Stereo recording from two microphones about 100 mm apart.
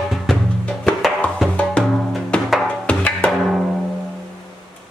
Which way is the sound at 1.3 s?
5° left (ahead or behind).